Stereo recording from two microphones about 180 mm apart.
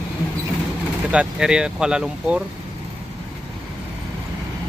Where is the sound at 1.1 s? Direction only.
5° right (ahead or behind).